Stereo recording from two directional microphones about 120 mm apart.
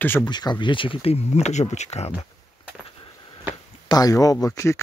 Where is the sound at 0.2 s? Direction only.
35° left (ahead or behind); by 2.1 s 65° left (ahead or behind).